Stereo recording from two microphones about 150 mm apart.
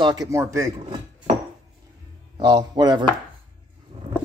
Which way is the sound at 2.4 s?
30° right (ahead or behind).